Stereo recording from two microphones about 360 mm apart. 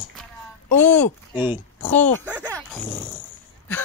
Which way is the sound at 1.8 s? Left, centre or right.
Centre.